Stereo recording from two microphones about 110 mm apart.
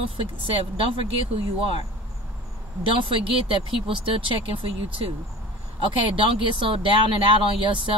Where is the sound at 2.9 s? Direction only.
55° right (ahead or behind).